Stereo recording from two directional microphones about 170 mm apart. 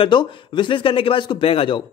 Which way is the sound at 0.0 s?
25° left (ahead or behind).